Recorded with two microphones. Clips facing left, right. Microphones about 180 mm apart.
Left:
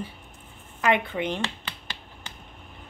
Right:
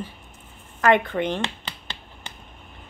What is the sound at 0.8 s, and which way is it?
Speech, 50° right (ahead or behind).